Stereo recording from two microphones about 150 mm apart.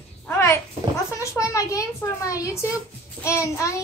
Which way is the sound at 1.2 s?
20° left (ahead or behind).